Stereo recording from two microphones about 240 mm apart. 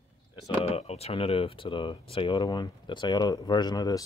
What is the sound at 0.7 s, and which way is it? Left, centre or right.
Speech, left.